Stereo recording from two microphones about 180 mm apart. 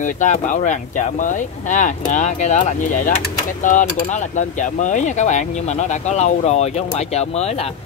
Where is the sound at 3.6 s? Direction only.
45° left (ahead or behind).